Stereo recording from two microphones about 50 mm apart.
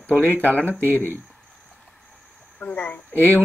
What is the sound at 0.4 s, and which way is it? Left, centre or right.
Speech, left.